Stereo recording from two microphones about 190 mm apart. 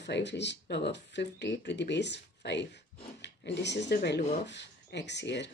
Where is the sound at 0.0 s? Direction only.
65° left (ahead or behind).